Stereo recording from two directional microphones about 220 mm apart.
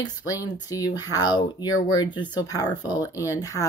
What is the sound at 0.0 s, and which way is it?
Speech, 15° left (ahead or behind).